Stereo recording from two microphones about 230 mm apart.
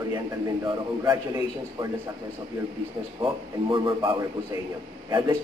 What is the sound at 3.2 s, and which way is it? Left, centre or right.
A man's voice, right.